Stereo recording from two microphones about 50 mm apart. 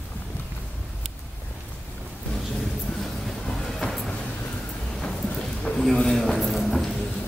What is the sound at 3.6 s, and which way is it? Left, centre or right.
Train, centre.